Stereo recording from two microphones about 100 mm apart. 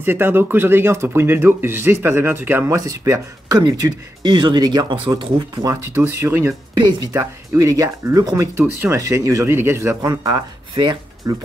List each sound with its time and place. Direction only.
0.0 s speech: 20° right (ahead or behind)
2.7 s speech: 35° right (ahead or behind); by 5.1 s 55° right (ahead or behind)
5.6 s speech: 40° right (ahead or behind)
5.9 s speech: 25° right (ahead or behind); by 11.3 s 40° right (ahead or behind)